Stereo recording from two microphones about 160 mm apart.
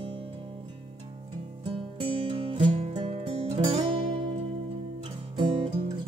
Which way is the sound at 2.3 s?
35° right (ahead or behind).